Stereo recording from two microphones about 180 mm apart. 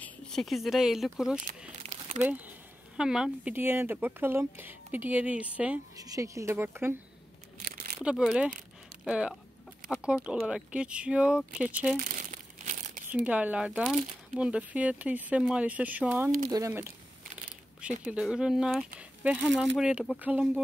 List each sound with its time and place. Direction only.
0.0 s speech: 5° left (ahead or behind)
1.8 s crumpling: 40° right (ahead or behind)
2.2 s speech: 10° right (ahead or behind)
5.9 s speech: 20° right (ahead or behind)
8.0 s speech: 5° right (ahead or behind)
12.0 s crumpling: 45° right (ahead or behind)
13.1 s speech: 10° right (ahead or behind)
18.0 s speech: 5° right (ahead or behind)